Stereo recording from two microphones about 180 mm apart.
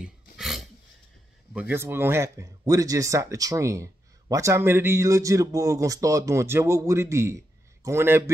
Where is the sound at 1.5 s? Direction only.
10° right (ahead or behind).